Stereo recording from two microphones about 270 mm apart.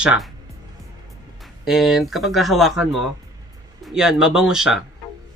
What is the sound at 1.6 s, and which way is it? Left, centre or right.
Speech, centre.